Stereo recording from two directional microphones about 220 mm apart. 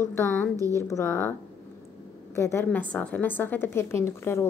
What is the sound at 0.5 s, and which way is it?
Speech, 15° right (ahead or behind).